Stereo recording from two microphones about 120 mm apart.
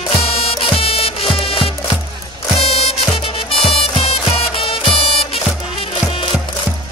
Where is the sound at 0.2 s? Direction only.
50° left (ahead or behind).